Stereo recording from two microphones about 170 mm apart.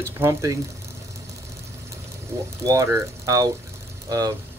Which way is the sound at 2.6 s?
20° right (ahead or behind).